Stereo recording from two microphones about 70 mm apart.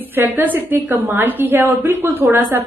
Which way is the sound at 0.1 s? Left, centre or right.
Right.